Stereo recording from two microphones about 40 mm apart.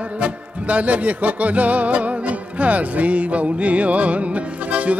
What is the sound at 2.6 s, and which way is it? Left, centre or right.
Music, right.